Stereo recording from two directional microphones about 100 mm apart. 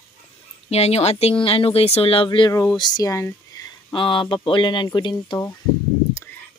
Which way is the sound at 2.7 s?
45° left (ahead or behind).